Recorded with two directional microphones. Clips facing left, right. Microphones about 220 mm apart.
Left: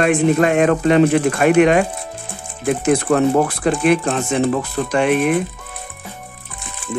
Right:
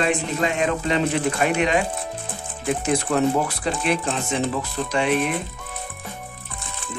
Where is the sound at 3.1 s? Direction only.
55° left (ahead or behind).